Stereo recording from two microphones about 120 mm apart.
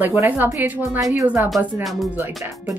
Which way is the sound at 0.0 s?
15° right (ahead or behind).